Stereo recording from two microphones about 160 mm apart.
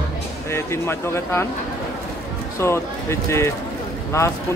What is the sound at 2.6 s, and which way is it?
Speech, 15° left (ahead or behind).